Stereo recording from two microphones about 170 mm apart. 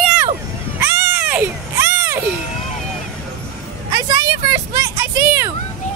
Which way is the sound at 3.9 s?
20° right (ahead or behind).